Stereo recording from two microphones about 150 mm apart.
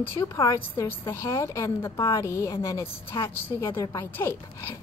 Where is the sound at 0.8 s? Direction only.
20° left (ahead or behind).